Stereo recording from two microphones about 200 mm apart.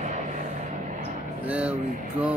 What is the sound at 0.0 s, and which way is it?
Vehicle, 40° right (ahead or behind).